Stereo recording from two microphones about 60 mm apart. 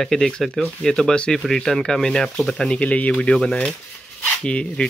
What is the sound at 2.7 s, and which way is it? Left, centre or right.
Speech, left.